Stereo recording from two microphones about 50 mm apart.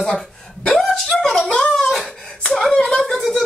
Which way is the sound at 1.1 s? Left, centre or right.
Centre.